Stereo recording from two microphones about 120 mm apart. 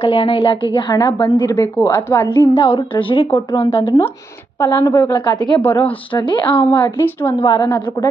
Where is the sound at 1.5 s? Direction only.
25° left (ahead or behind).